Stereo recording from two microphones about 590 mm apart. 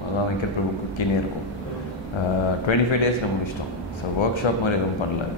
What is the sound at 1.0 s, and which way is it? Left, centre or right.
Speech, left.